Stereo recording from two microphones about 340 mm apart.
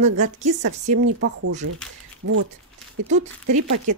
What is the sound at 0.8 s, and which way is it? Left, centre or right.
Speech, right.